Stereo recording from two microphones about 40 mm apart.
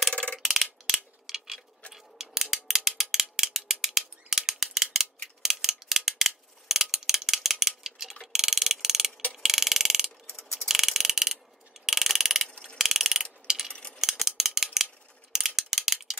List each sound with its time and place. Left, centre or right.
0.1 s mechanisms: left
0.4 s mechanisms: centre
2.0 s a sound: centre
2.5 s mechanisms: centre